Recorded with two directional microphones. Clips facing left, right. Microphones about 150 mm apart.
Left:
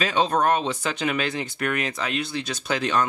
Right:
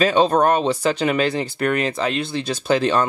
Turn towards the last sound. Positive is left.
turn(degrees=-30)  # may be behind; listen again after turning